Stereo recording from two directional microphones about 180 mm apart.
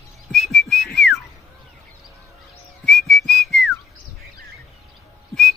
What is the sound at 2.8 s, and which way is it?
Whistling, centre (ahead or behind).